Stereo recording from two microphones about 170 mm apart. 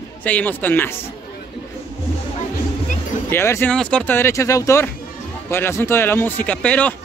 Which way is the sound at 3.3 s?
15° left (ahead or behind).